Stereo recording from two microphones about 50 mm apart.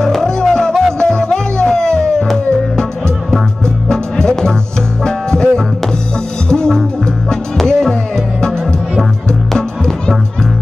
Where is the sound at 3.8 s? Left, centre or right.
Centre.